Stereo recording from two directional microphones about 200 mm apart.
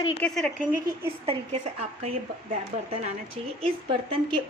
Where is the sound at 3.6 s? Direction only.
25° right (ahead or behind).